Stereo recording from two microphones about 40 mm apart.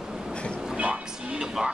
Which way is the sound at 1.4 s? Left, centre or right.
Centre.